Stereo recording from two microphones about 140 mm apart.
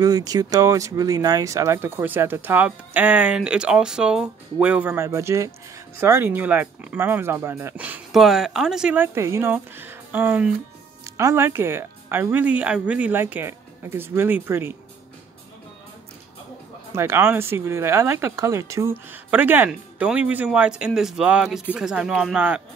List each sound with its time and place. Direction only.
0.0 s speech: 25° right (ahead or behind); by 10.5 s 10° right (ahead or behind)
11.1 s speech: 20° right (ahead or behind)
16.9 s speech: 20° right (ahead or behind)